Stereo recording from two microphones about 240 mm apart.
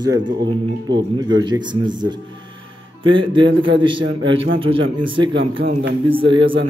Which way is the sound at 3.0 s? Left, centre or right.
Right.